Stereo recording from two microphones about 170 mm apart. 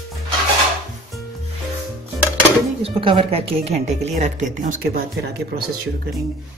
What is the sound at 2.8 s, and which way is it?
Speech, 30° right (ahead or behind).